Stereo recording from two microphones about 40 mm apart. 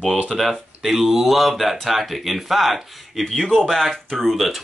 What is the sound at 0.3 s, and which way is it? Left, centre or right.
Speech, centre.